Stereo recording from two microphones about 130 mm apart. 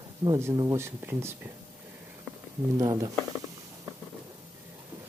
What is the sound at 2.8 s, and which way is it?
Speech, 30° right (ahead or behind).